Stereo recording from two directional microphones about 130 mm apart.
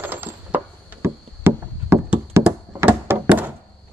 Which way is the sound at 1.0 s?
20° right (ahead or behind).